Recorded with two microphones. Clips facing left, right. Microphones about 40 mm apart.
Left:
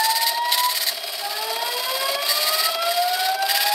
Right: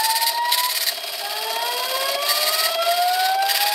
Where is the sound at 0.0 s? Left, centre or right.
Centre.